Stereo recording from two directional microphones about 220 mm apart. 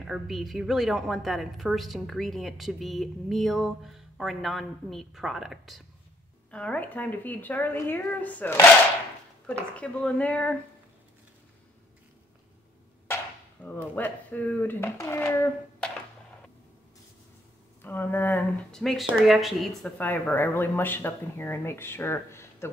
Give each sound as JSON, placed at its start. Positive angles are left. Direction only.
{"t": 0.0, "sound": "a woman's voice", "side_deg": 0}
{"t": 9.8, "sound": "a woman's voice", "side_deg": 5}
{"t": 13.6, "sound": "speech", "side_deg": 10}
{"t": 17.8, "sound": "speech", "side_deg": 10}